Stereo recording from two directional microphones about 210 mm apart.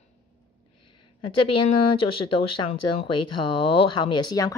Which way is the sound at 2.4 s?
25° left (ahead or behind).